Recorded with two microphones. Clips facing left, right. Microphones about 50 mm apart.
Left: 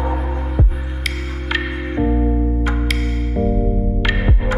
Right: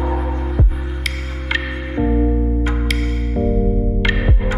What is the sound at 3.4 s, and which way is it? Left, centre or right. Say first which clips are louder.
Music: even; centre.